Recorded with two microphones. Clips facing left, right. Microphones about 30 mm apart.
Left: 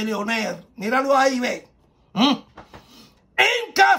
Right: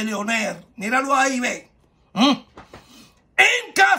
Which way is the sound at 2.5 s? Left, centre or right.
Right.